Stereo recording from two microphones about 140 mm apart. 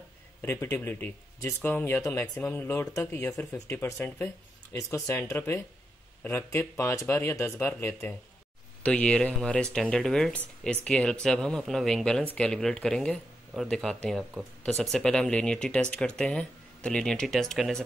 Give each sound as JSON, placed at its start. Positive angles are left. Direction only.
{"t": 0.4, "sound": "speech", "side_deg": 15}